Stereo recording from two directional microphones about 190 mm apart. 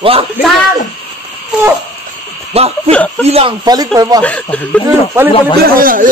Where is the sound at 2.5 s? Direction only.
30° right (ahead or behind).